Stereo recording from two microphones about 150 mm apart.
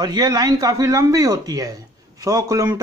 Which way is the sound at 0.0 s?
30° right (ahead or behind).